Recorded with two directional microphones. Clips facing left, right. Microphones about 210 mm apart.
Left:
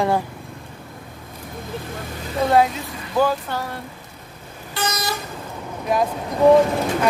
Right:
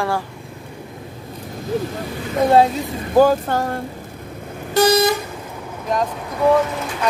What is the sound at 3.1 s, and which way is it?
Speech, 45° right (ahead or behind).